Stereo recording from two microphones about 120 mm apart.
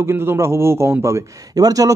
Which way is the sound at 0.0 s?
20° right (ahead or behind).